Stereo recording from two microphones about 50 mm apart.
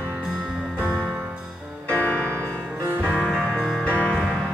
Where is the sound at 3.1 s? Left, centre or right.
Centre.